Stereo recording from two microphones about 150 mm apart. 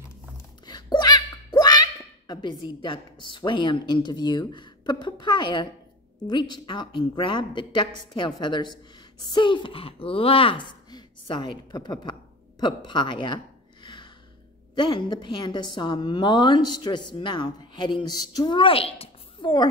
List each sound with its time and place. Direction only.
0.7 s a woman's voice: 30° left (ahead or behind)
14.8 s a woman's voice: 30° left (ahead or behind)